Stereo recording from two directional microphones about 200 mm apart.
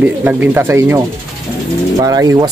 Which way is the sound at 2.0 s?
20° right (ahead or behind).